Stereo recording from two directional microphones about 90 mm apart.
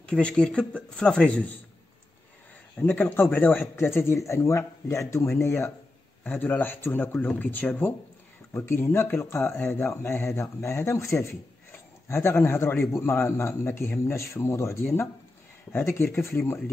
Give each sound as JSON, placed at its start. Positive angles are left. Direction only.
{"t": 0.0, "sound": "speech", "side_deg": 10}
{"t": 2.8, "sound": "speech", "side_deg": 20}